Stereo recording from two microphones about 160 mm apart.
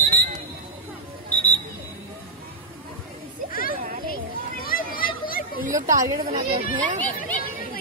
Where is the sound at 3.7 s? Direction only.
60° right (ahead or behind).